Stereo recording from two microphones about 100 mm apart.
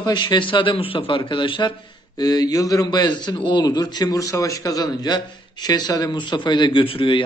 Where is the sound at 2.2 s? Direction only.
40° left (ahead or behind).